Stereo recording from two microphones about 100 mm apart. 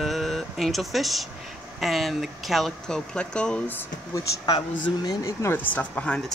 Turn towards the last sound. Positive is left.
turn(degrees=10)  # may be behind; listen again after turning